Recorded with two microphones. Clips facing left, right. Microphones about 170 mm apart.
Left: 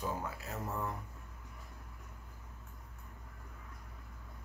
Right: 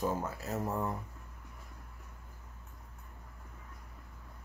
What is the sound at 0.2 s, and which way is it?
Speech, 40° right (ahead or behind).